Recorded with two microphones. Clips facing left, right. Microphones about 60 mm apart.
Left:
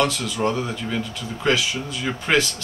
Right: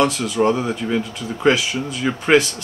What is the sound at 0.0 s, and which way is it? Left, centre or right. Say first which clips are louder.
Speech: right 4 dB; centre.